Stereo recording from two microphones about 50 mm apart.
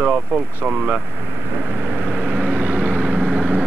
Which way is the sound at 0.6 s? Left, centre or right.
Centre.